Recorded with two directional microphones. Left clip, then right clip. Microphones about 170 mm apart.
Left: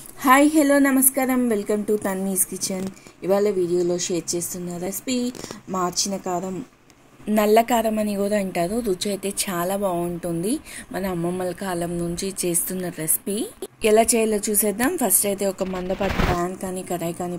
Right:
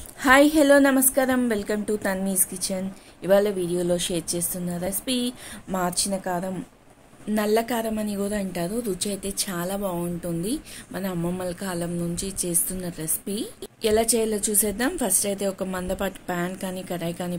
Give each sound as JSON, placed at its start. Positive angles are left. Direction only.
{"t": 0.2, "sound": "a woman's voice", "side_deg": 20}